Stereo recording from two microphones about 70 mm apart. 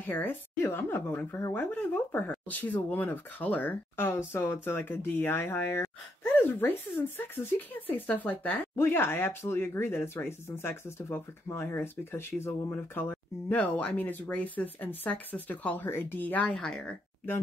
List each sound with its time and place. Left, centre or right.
0.0 s speech: left
1.5 s speech: left
13.6 s speech: centre
16.5 s speech: centre